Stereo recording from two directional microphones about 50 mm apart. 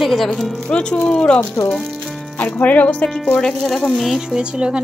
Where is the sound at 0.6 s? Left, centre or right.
Centre.